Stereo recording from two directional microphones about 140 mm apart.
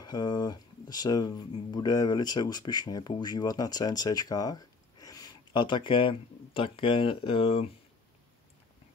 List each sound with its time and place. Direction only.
0.0 s speech: 30° left (ahead or behind)